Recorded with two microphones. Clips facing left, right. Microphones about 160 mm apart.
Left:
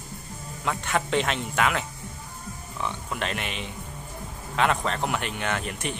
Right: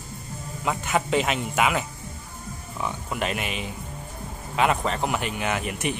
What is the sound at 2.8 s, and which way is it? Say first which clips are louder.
Speech: right 2 dB; 5° right (ahead or behind).